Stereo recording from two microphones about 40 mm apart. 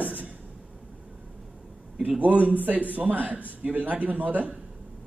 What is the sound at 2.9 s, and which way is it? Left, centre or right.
A man's voice, right.